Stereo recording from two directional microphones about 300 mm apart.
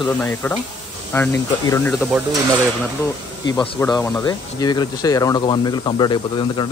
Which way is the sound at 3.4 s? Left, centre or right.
Centre.